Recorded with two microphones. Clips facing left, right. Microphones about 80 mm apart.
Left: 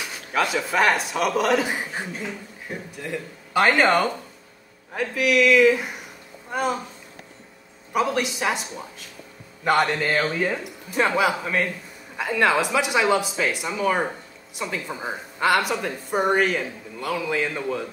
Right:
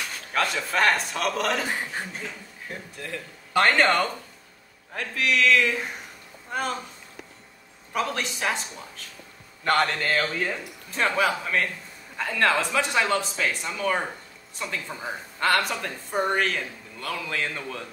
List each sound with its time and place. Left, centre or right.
0.0 s speech: centre
1.7 s speech: centre
3.5 s speech: centre
7.9 s speech: centre